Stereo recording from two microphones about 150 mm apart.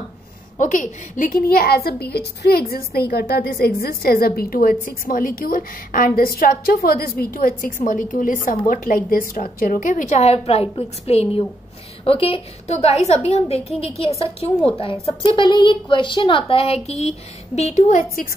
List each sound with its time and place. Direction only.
0.6 s a woman's voice: 60° left (ahead or behind)
1.5 s a child's voice: 90° left; by 18.3 s 65° left (ahead or behind)